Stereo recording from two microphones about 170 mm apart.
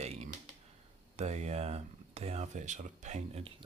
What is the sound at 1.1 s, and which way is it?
Speech, 40° right (ahead or behind).